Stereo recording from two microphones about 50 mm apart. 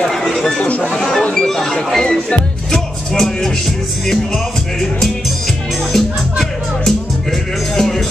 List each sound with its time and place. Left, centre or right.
0.6 s speech: left
0.9 s speech: centre
5.9 s music: centre